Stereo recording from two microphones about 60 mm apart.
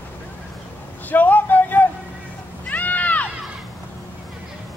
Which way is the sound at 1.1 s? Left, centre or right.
Left.